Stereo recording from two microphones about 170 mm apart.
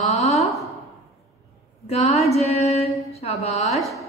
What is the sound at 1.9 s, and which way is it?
Mantra, 40° left (ahead or behind).